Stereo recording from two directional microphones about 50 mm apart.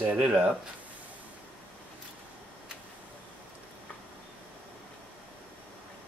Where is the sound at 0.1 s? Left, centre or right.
Right.